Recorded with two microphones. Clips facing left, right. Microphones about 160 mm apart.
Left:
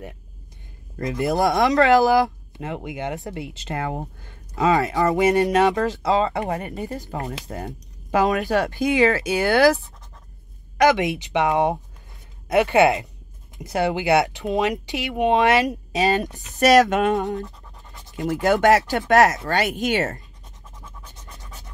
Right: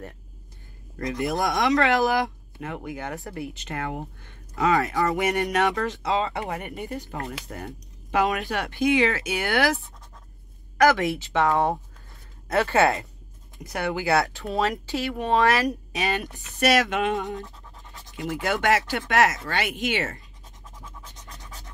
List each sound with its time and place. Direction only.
0.9 s speech: 30° left (ahead or behind)
4.6 s speech: 25° left (ahead or behind)
7.2 s speech: 25° left (ahead or behind)
10.8 s speech: 20° left (ahead or behind)
13.6 s speech: 25° left (ahead or behind)
16.1 s speech: 40° left (ahead or behind)